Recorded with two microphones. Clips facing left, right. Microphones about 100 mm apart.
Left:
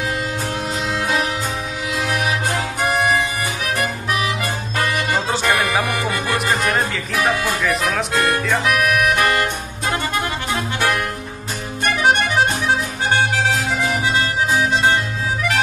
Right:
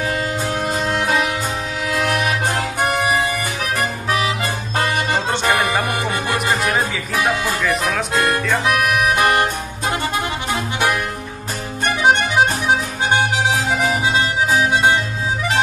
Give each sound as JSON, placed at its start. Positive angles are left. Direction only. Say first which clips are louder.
{"t": 0.5, "sound": "music", "louder": "right 3 dB", "side_deg": -40}
{"t": 4.1, "sound": "music", "louder": "right 3 dB", "side_deg": -30}
{"t": 6.5, "sound": "music", "louder": "even", "side_deg": 0}
{"t": 8.6, "sound": "music", "louder": "even", "side_deg": -30}
{"t": 11.9, "sound": "accordion", "louder": "right 1 dB", "side_deg": -20}